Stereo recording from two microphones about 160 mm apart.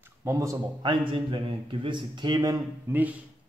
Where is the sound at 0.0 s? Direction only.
15° right (ahead or behind).